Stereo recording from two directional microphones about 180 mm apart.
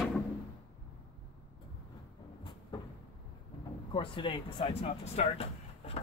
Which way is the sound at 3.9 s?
30° left (ahead or behind).